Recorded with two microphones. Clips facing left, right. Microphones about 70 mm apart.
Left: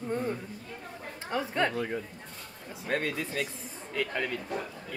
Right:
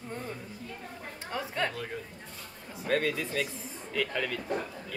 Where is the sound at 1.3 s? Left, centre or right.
Centre.